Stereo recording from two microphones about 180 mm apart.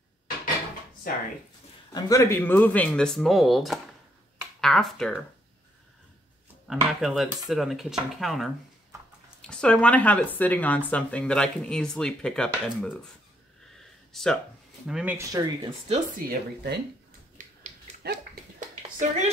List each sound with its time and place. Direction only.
1.1 s speech: 55° left (ahead or behind)
1.9 s speech: 20° left (ahead or behind); by 5.1 s 5° left (ahead or behind)
6.7 s speech: centre (ahead or behind)
9.5 s speech: 5° left (ahead or behind)
14.1 s speech: centre (ahead or behind)
15.1 s speech: 20° right (ahead or behind)
16.3 s speech: 65° right (ahead or behind)
17.4 s dog: 45° right (ahead or behind)
18.8 s a sound: 40° right (ahead or behind)